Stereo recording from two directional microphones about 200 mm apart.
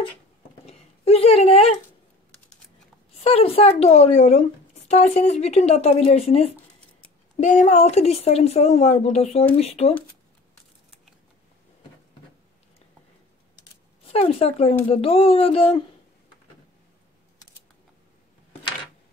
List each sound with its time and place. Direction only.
0.7 s a sound: 30° left (ahead or behind)
3.3 s speech: 30° left (ahead or behind)
13.6 s typing: 30° left (ahead or behind)
14.9 s speech: 30° left (ahead or behind)